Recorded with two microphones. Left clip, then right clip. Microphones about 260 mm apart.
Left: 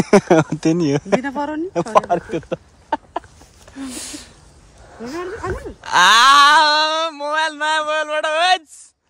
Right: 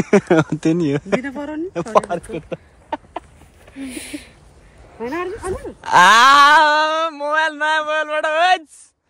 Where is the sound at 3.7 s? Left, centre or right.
Centre.